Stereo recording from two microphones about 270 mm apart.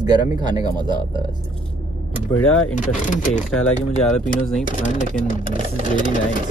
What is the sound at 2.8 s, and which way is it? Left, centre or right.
Speech, left.